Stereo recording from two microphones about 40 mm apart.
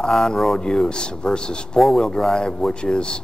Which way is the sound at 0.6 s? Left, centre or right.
Left.